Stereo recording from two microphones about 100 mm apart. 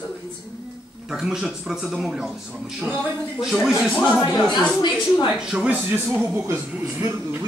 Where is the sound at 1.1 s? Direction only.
5° right (ahead or behind).